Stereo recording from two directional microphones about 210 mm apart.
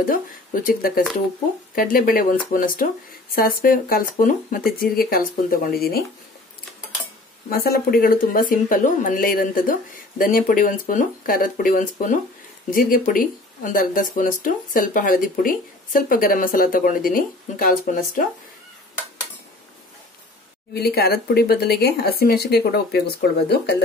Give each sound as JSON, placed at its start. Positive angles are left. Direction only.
{"t": 0.7, "sound": "a woman's voice", "side_deg": 45}
{"t": 7.4, "sound": "speech", "side_deg": 45}
{"t": 20.7, "sound": "a woman's voice", "side_deg": 50}